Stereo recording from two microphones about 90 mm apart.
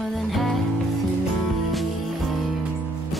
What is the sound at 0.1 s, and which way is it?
Music, centre (ahead or behind).